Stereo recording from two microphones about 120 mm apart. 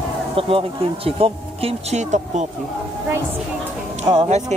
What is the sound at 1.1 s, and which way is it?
Speech, 55° right (ahead or behind).